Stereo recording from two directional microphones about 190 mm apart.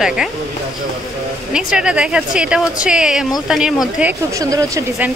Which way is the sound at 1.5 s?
5° right (ahead or behind).